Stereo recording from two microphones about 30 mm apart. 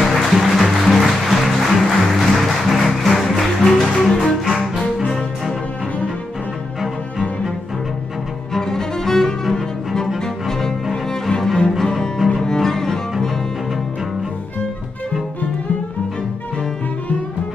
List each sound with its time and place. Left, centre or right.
0.0 s music: centre
4.5 s cello: centre
6.8 s cello: centre
8.5 s cello: centre